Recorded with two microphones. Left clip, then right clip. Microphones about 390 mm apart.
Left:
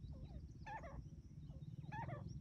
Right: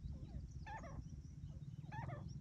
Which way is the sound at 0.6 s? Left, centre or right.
Centre.